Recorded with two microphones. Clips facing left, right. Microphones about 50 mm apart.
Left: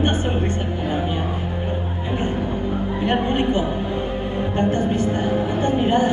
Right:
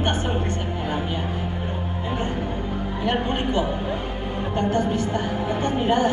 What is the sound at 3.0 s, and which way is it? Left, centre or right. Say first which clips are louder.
A woman's voice: left 3 dB; left.